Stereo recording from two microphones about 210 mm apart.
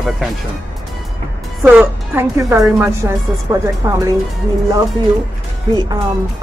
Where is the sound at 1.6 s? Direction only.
10° right (ahead or behind).